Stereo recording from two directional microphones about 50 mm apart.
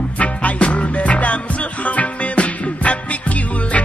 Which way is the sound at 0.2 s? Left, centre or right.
Left.